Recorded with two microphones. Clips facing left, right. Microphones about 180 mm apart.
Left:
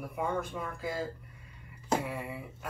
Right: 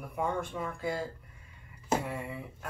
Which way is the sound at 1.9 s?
5° left (ahead or behind).